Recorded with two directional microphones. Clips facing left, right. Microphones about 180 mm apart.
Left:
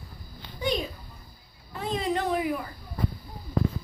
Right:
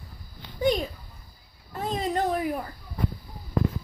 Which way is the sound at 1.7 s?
40° right (ahead or behind).